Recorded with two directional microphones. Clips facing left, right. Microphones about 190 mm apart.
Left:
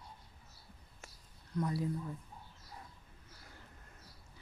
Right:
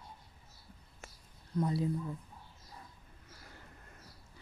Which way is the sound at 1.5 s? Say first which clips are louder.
Right 3 dB; 25° right (ahead or behind).